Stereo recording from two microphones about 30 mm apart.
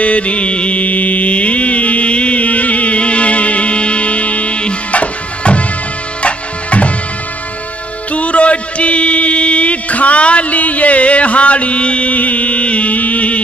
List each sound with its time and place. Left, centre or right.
0.0 s music: left
2.4 s music: left
8.1 s a sound: left
12.1 s music: left